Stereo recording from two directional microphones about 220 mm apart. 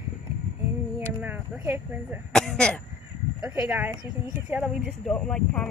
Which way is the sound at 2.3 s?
5° left (ahead or behind).